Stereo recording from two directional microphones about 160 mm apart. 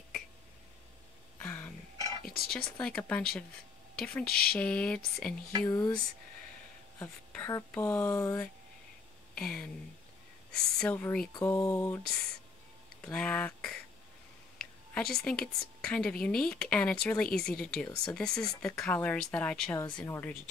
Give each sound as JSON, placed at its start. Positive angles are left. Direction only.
{"t": 1.4, "sound": "cough", "side_deg": 10}
{"t": 2.3, "sound": "a woman's voice", "side_deg": 0}
{"t": 5.7, "sound": "speech", "side_deg": 25}
{"t": 7.0, "sound": "speech", "side_deg": 10}
{"t": 9.3, "sound": "speech", "side_deg": 5}
{"t": 13.0, "sound": "a woman's voice", "side_deg": 5}